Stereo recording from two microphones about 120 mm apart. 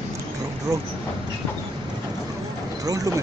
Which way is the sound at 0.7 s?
25° right (ahead or behind).